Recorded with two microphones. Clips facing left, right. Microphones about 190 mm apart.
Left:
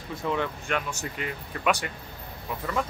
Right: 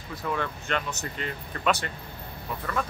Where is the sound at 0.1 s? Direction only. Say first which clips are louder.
Left 2 dB; 20° left (ahead or behind).